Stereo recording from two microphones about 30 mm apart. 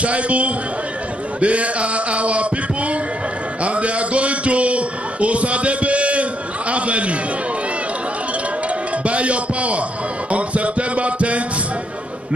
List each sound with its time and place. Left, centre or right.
0.0 s mantra: right
3.6 s a sound: right
9.0 s music: right